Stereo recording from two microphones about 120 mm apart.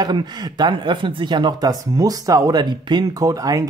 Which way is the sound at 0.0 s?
35° right (ahead or behind).